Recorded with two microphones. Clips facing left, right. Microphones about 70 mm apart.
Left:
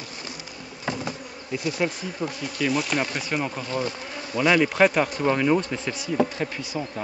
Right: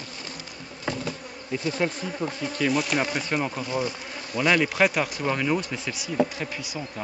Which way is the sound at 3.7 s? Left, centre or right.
Centre.